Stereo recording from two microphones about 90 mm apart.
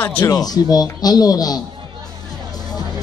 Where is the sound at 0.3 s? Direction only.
45° left (ahead or behind).